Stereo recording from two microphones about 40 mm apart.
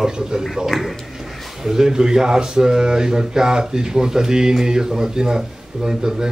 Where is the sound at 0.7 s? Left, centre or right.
Centre.